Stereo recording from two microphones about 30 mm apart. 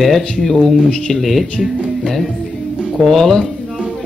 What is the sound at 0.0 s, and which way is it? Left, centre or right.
A man's voice, centre.